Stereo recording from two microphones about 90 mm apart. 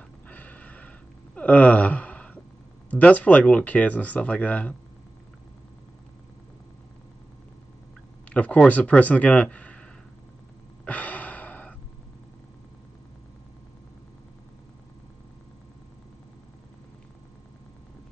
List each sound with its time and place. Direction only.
0.3 s a sound: 20° left (ahead or behind)
2.9 s speech: 15° left (ahead or behind)
8.3 s speech: 15° left (ahead or behind)
10.9 s gasp: 15° left (ahead or behind)